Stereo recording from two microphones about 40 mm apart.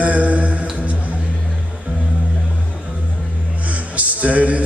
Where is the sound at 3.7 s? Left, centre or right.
Right.